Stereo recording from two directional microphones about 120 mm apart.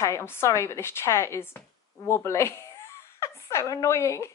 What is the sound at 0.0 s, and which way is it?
Speech, 25° left (ahead or behind).